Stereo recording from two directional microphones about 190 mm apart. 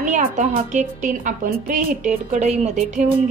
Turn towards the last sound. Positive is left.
turn(degrees=-45)  # may be behind; listen again after turning